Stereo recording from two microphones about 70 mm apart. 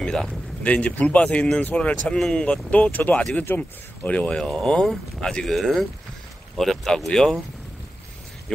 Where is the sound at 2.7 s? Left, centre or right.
Left.